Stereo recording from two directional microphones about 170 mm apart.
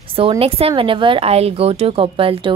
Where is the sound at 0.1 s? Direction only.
30° right (ahead or behind).